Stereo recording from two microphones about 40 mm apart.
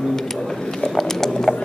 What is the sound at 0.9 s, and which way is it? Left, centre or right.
Mechanisms, centre.